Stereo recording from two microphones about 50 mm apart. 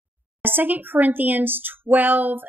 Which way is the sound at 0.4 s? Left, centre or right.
Right.